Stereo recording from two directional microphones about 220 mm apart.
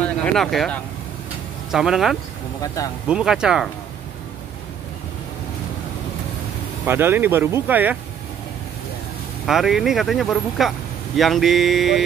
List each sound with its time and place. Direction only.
0.0 s speech: 5° left (ahead or behind)
2.6 s speech: 15° left (ahead or behind)
3.1 s speech: 5° right (ahead or behind)
6.9 s speech: 10° right (ahead or behind)
9.5 s speech: centre (ahead or behind)